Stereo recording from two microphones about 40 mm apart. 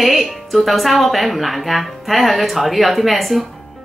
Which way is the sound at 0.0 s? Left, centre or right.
Centre.